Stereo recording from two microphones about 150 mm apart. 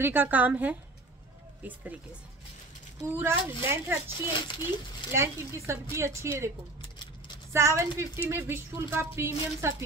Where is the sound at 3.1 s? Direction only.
15° right (ahead or behind).